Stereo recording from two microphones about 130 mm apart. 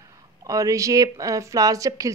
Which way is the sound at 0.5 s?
25° right (ahead or behind).